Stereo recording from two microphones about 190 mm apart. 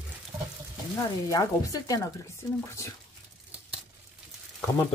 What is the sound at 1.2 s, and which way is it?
Speech, 20° left (ahead or behind).